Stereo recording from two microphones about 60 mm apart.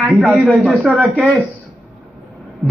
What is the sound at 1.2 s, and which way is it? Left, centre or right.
Speech, left.